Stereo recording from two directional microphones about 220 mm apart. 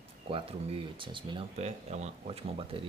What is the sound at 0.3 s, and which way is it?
Speech, 25° right (ahead or behind).